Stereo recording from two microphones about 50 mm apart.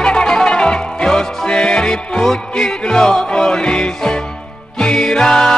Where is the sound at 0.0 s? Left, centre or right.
Centre.